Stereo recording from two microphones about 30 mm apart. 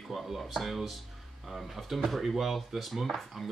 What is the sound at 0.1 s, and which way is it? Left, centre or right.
Speech, centre.